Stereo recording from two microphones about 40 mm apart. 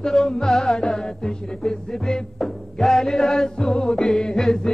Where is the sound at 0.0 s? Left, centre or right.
Centre.